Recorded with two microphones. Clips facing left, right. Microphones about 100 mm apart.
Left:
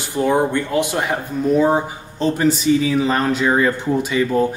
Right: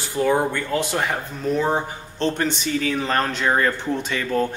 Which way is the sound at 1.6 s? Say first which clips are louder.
Left 6 dB; 10° left (ahead or behind).